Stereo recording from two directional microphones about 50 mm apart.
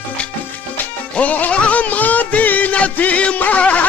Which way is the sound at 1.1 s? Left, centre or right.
Left.